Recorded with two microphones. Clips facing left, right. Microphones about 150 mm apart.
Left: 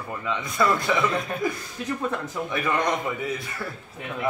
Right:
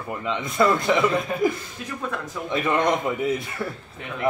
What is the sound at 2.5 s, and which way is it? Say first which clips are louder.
A man's voice: right 4 dB; 25° right (ahead or behind).